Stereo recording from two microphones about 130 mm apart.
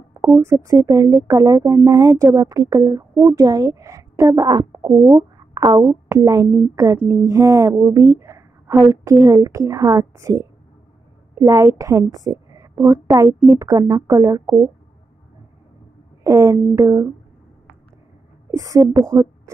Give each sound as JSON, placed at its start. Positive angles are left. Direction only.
{"t": 0.3, "sound": "speech", "side_deg": -20}
{"t": 16.3, "sound": "speech", "side_deg": -25}
{"t": 18.5, "sound": "speech", "side_deg": -25}